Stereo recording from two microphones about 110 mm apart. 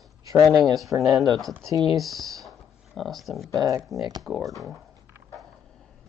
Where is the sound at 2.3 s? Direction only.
Centre (ahead or behind).